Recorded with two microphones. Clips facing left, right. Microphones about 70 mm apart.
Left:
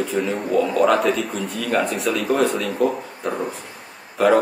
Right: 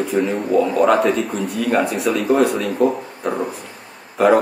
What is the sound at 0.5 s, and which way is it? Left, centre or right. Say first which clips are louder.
Speech: right 2 dB; centre.